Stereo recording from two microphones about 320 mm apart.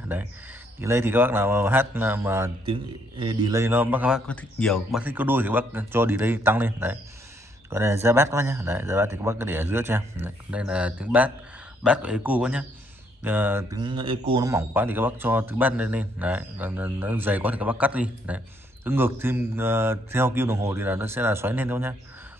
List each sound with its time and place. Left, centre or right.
0.7 s a man's voice: centre